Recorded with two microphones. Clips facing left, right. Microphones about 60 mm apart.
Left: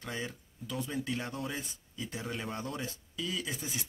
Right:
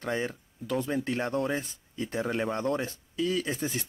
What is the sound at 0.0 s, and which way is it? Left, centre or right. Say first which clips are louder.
Speech: right 8 dB; right.